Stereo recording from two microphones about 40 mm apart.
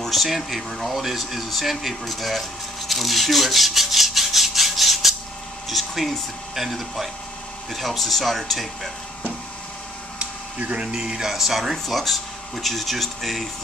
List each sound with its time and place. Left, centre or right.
0.0 s speech: centre
2.9 s rub: centre
5.7 s speech: centre
10.6 s speech: right
10.9 s speech: centre